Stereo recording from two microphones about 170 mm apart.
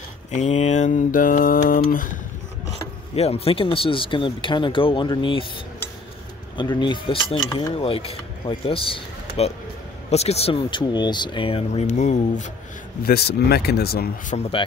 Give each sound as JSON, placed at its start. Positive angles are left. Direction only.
{"t": 0.3, "sound": "mantra", "side_deg": 45}
{"t": 3.2, "sound": "speech", "side_deg": 35}
{"t": 6.5, "sound": "speech", "side_deg": 25}
{"t": 13.0, "sound": "speech", "side_deg": 70}
{"t": 14.3, "sound": "speech", "side_deg": 35}